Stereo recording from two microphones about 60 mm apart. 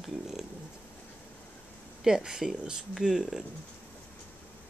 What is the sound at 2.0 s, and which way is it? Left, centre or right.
Speech, centre.